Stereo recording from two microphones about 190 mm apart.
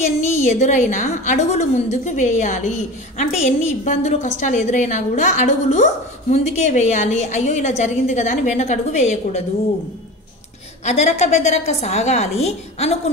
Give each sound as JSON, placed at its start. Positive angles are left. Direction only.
{"t": 0.2, "sound": "a woman's voice", "side_deg": 40}
{"t": 10.9, "sound": "a woman's voice", "side_deg": 35}